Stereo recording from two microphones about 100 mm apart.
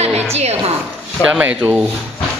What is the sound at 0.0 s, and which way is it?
Music, 90° right.